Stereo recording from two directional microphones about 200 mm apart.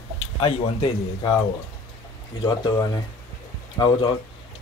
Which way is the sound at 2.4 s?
25° left (ahead or behind).